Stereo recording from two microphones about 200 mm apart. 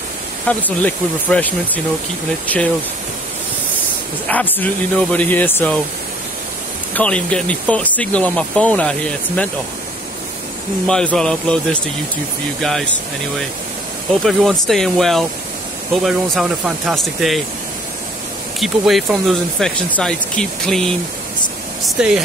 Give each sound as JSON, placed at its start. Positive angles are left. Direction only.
{"t": 0.5, "sound": "speech", "side_deg": 10}
{"t": 4.3, "sound": "speech", "side_deg": 10}
{"t": 7.0, "sound": "speech", "side_deg": 5}
{"t": 10.9, "sound": "speech", "side_deg": 5}
{"t": 14.2, "sound": "speech", "side_deg": 0}
{"t": 18.6, "sound": "speech", "side_deg": 0}